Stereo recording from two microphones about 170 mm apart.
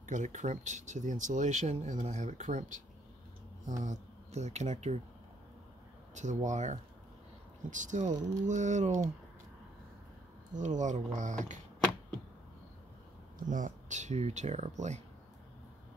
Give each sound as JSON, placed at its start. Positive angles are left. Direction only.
{"t": 0.0, "sound": "speech", "side_deg": -45}
{"t": 6.1, "sound": "speech", "side_deg": -45}
{"t": 10.5, "sound": "speech", "side_deg": -45}
{"t": 13.5, "sound": "speech", "side_deg": -50}